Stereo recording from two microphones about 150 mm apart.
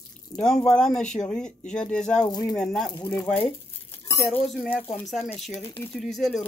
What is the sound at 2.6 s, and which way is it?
Speech, 5° left (ahead or behind).